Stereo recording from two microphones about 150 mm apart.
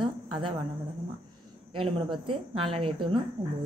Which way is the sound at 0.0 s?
35° right (ahead or behind).